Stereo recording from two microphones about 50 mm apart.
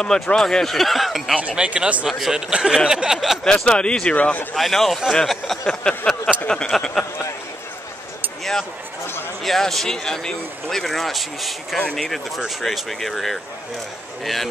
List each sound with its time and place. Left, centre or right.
0.0 s a sound: centre
0.4 s speech: centre
1.5 s speech: centre
2.0 s speech: centre
3.4 s speech: centre
4.2 s speech: left
4.6 s speech: centre
5.1 s a sound: centre
9.4 s speech: centre
11.9 s a sound: centre
12.6 s speech: centre